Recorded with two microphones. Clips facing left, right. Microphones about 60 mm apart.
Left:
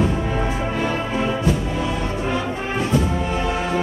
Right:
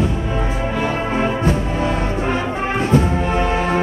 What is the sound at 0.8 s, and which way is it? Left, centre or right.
Music, right.